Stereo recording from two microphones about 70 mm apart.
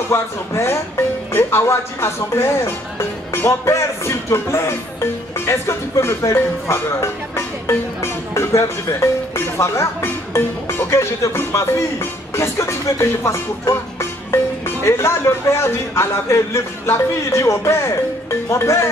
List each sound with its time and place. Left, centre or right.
0.1 s speech: left